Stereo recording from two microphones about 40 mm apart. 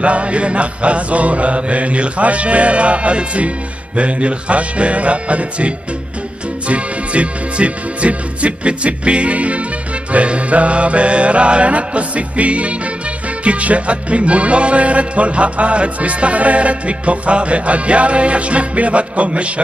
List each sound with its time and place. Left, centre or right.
0.0 s music: right
6.7 s music: right